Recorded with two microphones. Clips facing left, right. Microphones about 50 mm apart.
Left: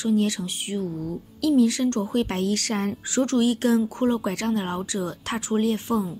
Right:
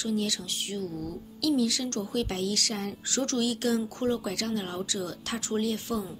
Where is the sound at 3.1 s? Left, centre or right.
Left.